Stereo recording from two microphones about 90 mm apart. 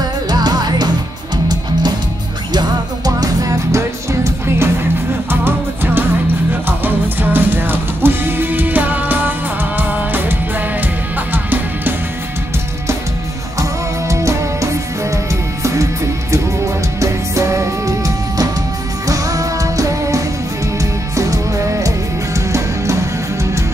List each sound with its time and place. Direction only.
0.3 s music: 50° right (ahead or behind)
3.2 s music: 40° right (ahead or behind)
6.8 s music: 20° right (ahead or behind)
11.3 s music: 20° right (ahead or behind)
13.6 s music: 35° right (ahead or behind)